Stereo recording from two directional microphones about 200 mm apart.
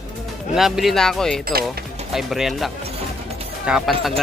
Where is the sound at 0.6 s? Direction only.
Centre (ahead or behind).